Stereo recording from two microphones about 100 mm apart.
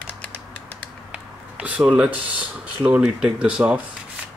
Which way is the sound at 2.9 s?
10° right (ahead or behind).